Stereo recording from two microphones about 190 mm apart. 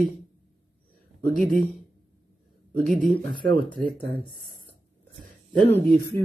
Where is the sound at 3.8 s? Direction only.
5° left (ahead or behind).